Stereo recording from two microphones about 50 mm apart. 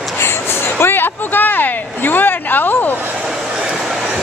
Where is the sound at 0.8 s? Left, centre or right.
Left.